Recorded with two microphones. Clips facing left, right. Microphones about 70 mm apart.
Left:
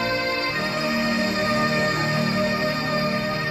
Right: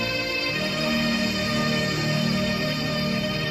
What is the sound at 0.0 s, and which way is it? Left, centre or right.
Music, left.